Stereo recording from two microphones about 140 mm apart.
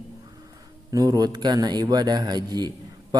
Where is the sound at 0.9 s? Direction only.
25° right (ahead or behind).